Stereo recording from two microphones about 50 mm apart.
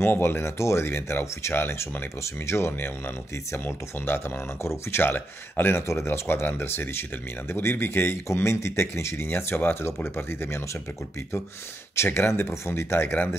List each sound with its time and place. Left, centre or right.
0.0 s speech: left
0.4 s speech: left
8.4 s speech: left
11.9 s speech: left